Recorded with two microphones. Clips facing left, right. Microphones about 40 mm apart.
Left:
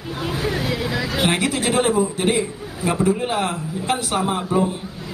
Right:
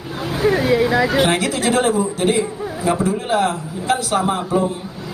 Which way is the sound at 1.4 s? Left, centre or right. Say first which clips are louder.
Right 2 dB; centre.